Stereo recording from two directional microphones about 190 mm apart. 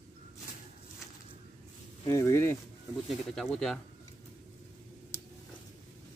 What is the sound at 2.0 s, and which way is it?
Speech, 15° left (ahead or behind).